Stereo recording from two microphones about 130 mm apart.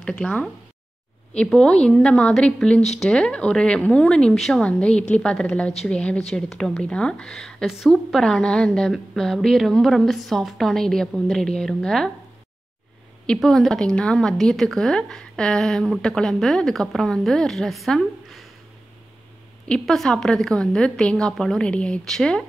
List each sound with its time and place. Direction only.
0.0 s a woman's voice: 5° left (ahead or behind)
13.3 s a woman's voice: 5° left (ahead or behind)
19.7 s a woman's voice: 5° left (ahead or behind)